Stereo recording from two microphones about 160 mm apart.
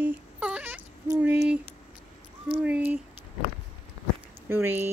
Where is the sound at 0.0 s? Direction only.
5° right (ahead or behind).